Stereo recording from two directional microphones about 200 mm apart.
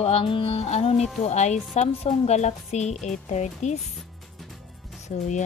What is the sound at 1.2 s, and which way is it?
A woman's voice, 35° left (ahead or behind).